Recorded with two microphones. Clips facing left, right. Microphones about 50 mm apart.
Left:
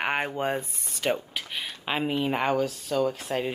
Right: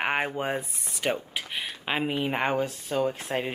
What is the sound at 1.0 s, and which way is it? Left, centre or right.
Speech, centre.